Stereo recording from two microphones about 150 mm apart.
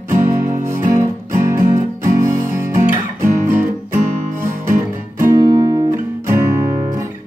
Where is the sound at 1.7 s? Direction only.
20° right (ahead or behind).